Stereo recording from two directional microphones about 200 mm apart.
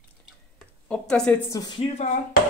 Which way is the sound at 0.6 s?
5° left (ahead or behind).